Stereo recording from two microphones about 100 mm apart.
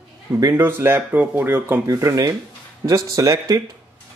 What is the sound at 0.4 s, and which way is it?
Speech, 25° right (ahead or behind).